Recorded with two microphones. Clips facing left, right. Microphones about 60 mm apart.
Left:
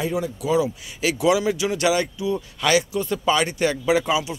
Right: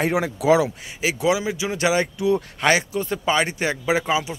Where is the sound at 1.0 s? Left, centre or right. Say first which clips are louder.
Left 2 dB; centre.